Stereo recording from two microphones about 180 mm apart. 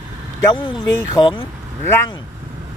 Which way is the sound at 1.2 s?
20° left (ahead or behind).